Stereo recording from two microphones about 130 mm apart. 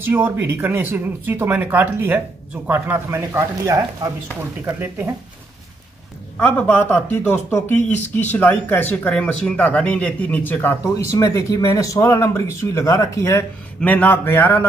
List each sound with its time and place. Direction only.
0.0 s speech: 15° right (ahead or behind)
4.6 s speech: 15° right (ahead or behind)
6.3 s speech: 15° left (ahead or behind)
13.7 s speech: 10° left (ahead or behind)